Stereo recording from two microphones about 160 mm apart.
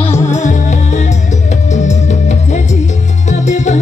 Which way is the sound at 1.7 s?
45° left (ahead or behind).